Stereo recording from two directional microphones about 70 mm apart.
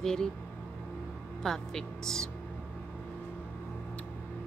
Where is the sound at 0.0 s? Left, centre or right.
Centre.